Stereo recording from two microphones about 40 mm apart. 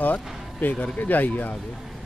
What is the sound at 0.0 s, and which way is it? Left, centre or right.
Speech, left.